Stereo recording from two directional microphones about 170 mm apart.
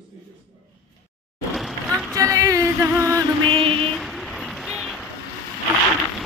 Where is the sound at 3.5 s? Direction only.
35° right (ahead or behind).